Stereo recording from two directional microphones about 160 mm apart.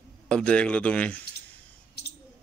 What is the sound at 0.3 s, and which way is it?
Speech, 5° left (ahead or behind).